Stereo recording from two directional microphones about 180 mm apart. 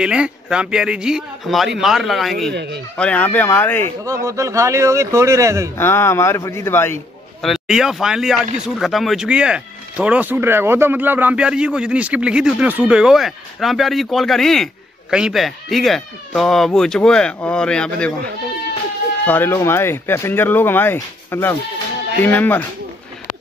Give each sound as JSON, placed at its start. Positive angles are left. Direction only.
{"t": 0.0, "sound": "speech", "side_deg": -5}
{"t": 2.5, "sound": "speech", "side_deg": -70}
{"t": 3.0, "sound": "speech", "side_deg": 10}
{"t": 4.0, "sound": "speech", "side_deg": -15}
{"t": 5.8, "sound": "speech", "side_deg": 15}
{"t": 7.4, "sound": "speech", "side_deg": 0}
{"t": 19.2, "sound": "speech", "side_deg": 10}